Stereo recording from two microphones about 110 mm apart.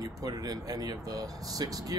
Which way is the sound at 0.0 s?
35° right (ahead or behind).